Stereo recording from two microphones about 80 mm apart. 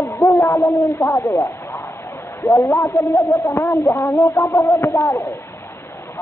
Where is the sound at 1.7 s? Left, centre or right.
Left.